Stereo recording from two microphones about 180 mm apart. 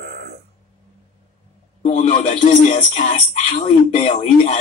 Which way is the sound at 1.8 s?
40° left (ahead or behind).